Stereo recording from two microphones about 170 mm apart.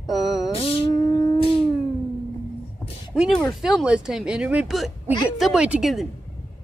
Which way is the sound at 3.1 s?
Centre (ahead or behind).